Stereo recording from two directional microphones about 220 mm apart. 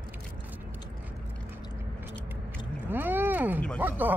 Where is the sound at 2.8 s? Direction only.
10° right (ahead or behind).